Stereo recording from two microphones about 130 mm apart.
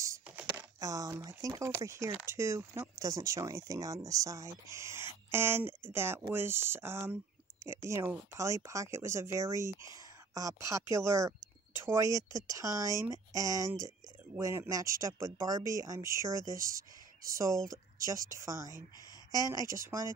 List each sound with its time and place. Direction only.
0.6 s speech: 25° right (ahead or behind)